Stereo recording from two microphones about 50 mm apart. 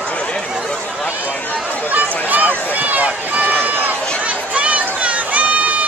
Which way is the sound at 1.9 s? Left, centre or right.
Right.